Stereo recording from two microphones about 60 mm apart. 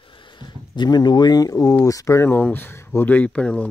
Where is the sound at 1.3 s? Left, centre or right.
Left.